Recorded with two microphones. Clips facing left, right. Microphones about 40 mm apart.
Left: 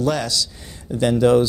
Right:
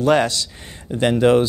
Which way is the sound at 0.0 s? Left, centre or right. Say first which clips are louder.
Right 5 dB; right.